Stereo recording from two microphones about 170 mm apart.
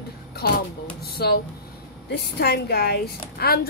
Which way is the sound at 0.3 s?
65° left (ahead or behind).